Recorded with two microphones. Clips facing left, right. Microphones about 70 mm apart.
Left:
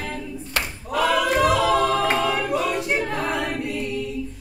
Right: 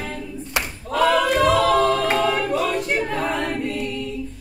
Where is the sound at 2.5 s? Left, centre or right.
Centre.